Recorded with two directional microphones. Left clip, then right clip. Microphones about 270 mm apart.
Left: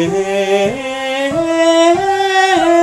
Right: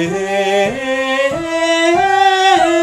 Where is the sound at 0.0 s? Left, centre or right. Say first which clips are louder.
Left 1 dB; left.